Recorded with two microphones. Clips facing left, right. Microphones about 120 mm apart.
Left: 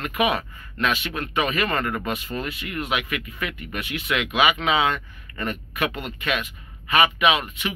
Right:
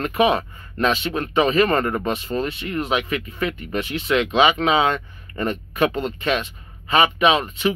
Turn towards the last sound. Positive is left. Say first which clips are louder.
# right 4 dB
turn(degrees=-30)  # may be behind; listen again after turning